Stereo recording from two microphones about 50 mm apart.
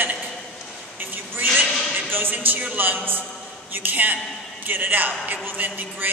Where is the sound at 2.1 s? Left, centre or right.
Right.